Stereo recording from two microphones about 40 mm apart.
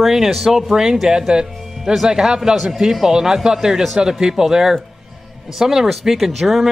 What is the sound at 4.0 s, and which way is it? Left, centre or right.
Speech, right.